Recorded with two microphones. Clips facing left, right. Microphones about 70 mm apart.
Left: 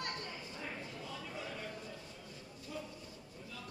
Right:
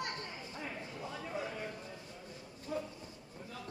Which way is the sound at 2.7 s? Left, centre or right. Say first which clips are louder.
Right 6 dB; right.